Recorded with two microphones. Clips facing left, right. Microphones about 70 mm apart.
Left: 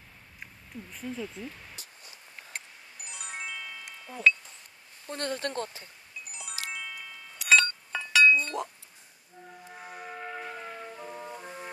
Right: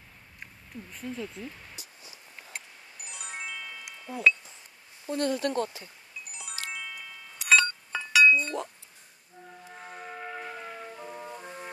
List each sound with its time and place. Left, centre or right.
0.4 s speech: centre
2.5 s music: centre
5.1 s speech: left
6.2 s music: centre
9.5 s music: centre